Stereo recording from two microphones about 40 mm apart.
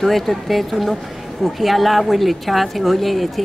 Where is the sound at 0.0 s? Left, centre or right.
Centre.